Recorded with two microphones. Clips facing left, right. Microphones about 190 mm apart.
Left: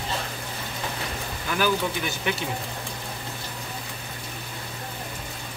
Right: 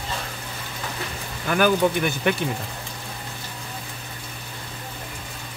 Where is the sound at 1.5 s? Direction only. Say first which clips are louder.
Right 6 dB; 55° right (ahead or behind).